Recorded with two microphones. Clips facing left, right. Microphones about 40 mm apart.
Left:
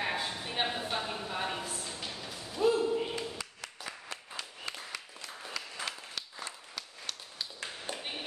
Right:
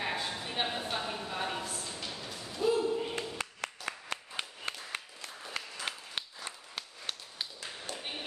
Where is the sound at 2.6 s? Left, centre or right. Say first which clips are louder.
Left 2 dB; centre.